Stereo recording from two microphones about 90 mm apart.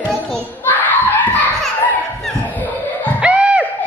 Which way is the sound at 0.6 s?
20° left (ahead or behind).